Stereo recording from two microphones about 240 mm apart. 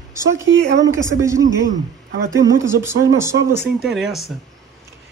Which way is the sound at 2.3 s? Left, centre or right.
Centre.